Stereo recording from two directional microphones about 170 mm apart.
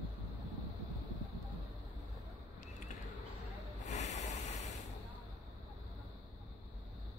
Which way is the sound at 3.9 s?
40° left (ahead or behind).